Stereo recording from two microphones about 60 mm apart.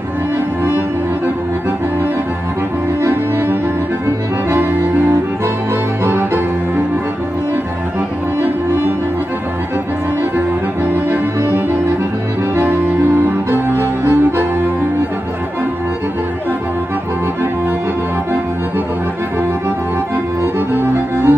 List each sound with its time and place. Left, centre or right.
3.0 s music: right
6.0 s music: right
8.4 s music: right
11.1 s music: right
20.7 s music: right